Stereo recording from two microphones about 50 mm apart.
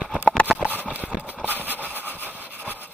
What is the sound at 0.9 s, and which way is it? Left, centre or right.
Horse, right.